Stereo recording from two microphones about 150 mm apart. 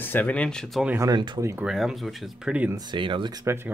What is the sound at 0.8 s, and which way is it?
Speech, 15° right (ahead or behind).